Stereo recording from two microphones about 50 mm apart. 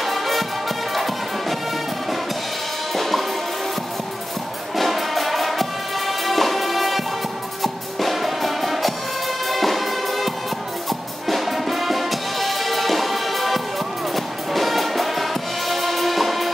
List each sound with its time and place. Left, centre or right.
0.0 s music: centre
2.9 s music: centre
4.7 s music: centre